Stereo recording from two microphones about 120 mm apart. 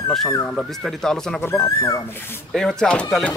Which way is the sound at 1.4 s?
20° left (ahead or behind).